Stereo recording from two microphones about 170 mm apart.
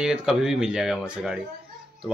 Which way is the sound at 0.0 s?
5° right (ahead or behind).